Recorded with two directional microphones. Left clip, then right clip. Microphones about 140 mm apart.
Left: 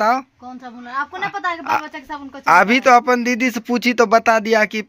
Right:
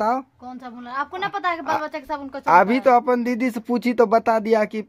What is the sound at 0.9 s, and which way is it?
A woman's voice, 40° right (ahead or behind).